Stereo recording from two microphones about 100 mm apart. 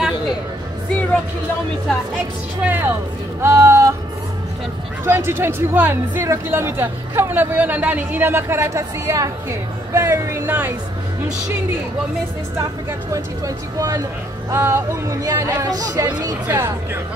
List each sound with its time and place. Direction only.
2.6 s speech: 20° right (ahead or behind)
3.4 s music: 30° right (ahead or behind)
5.0 s speech: 25° right (ahead or behind)
10.4 s speech: 20° right (ahead or behind)
13.7 s speech: 35° right (ahead or behind)
16.5 s speech: 25° right (ahead or behind)